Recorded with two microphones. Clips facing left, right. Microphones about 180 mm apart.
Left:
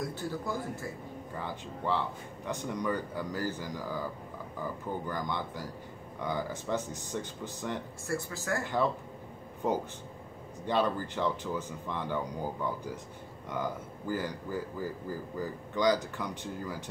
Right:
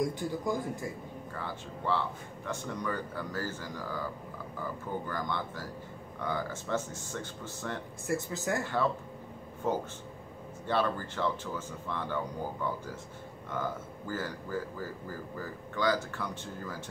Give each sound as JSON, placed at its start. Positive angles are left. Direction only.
{"t": 0.0, "sound": "speech", "side_deg": -15}
{"t": 1.4, "sound": "speech", "side_deg": 15}
{"t": 5.0, "sound": "speech", "side_deg": 15}
{"t": 8.1, "sound": "speech", "side_deg": -20}
{"t": 9.6, "sound": "speech", "side_deg": 15}
{"t": 13.5, "sound": "speech", "side_deg": 15}